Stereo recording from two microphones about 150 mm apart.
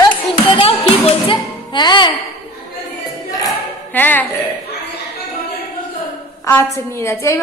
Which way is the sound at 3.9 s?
10° left (ahead or behind).